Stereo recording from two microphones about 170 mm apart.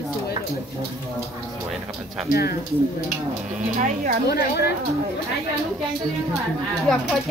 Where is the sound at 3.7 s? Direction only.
45° right (ahead or behind).